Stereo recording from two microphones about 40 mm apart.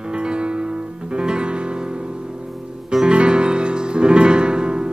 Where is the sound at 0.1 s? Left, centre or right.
Right.